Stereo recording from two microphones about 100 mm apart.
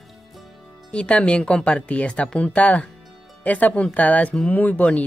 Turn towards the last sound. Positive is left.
turn(degrees=15)  # may be behind; listen again after turning